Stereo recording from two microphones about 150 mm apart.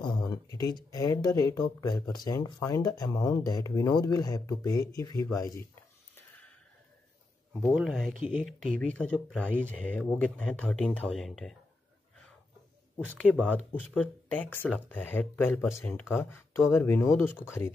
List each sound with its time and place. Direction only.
0.0 s speech: 25° left (ahead or behind)
7.7 s speech: centre (ahead or behind)
13.8 s speech: centre (ahead or behind)
14.4 s speech: 10° left (ahead or behind)